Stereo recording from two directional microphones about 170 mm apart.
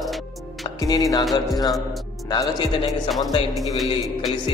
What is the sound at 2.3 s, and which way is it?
Speech, 20° left (ahead or behind).